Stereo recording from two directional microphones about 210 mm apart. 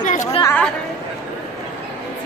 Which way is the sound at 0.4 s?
10° left (ahead or behind).